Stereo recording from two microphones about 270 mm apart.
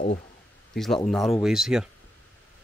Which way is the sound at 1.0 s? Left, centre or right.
Centre.